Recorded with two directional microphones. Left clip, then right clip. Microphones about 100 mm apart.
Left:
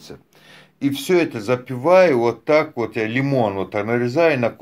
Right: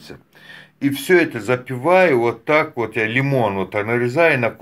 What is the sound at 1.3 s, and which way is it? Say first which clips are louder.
Speech: right 1 dB; 30° left (ahead or behind).